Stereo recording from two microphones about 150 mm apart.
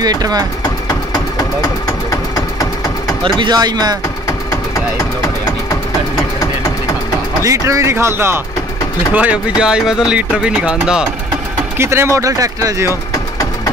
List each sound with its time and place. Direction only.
0.0 s speech: 25° right (ahead or behind)
2.0 s engine: 20° left (ahead or behind)
3.3 s speech: 30° right (ahead or behind)
7.4 s speech: 20° right (ahead or behind)
11.8 s speech: 15° right (ahead or behind)